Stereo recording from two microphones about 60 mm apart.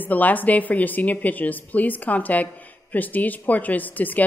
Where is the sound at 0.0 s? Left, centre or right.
Left.